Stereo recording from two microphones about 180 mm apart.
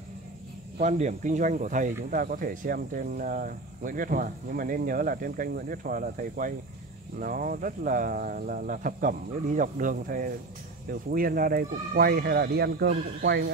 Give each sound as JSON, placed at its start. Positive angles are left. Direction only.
{"t": 0.7, "sound": "speech", "side_deg": -40}